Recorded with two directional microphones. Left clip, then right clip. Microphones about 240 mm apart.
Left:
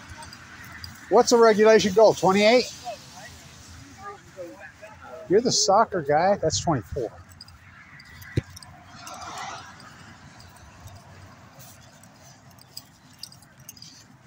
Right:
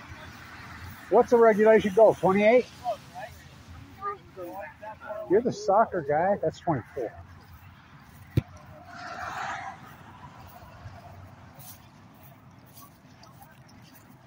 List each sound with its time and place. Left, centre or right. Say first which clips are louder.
1.1 s speech: left 3 dB; left
5.3 s speech: left 4 dB; left
8.4 s a sound: left 1 dB; right
8.9 s vehicle: right 2 dB; left